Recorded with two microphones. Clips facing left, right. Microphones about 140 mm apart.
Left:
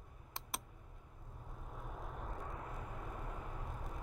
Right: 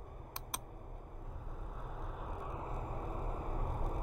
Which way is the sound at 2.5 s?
30° right (ahead or behind).